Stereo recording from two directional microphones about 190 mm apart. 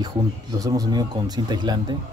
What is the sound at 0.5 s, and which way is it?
Speech, 20° right (ahead or behind).